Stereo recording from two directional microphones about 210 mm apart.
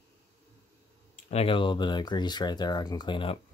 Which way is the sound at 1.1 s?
30° left (ahead or behind).